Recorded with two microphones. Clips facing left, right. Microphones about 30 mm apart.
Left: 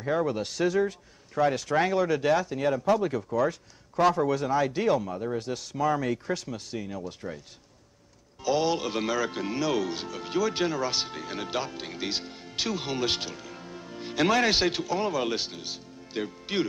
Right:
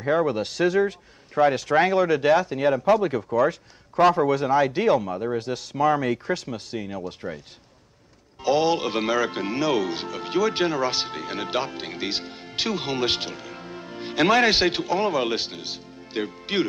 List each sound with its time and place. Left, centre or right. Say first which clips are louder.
0.0 s speech: right 5 dB; right